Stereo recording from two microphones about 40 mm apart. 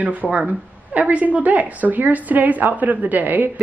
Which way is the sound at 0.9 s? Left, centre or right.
Right.